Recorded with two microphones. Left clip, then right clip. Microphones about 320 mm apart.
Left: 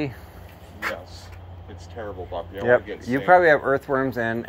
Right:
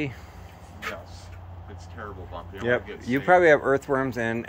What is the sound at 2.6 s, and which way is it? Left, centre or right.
Speech, centre.